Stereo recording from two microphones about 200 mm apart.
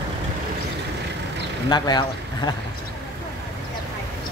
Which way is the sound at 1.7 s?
20° left (ahead or behind).